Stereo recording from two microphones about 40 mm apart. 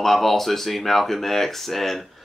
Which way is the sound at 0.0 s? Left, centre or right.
Centre.